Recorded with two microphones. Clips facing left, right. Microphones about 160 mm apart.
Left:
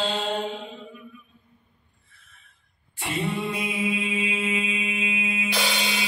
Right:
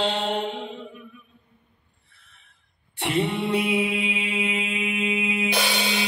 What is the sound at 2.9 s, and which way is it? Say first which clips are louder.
Mantra: right 4 dB; 65° right (ahead or behind).